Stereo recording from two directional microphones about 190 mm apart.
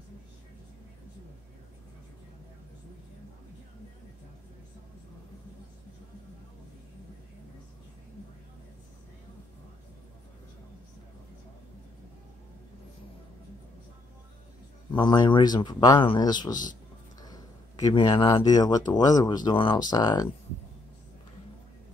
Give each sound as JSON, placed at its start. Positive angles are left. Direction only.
{"t": 14.9, "sound": "a man's voice", "side_deg": 25}